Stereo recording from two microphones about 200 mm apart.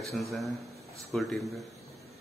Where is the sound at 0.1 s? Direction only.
Centre (ahead or behind).